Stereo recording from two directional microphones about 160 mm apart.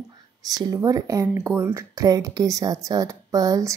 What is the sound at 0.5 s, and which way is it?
Speech, 25° right (ahead or behind).